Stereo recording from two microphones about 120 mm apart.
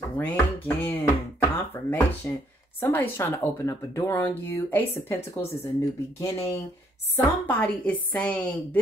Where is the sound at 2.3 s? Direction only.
20° left (ahead or behind).